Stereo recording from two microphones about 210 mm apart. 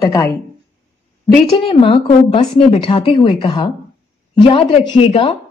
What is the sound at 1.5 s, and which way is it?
A woman's voice, 25° left (ahead or behind).